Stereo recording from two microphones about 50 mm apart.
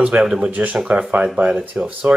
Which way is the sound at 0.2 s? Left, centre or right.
Centre.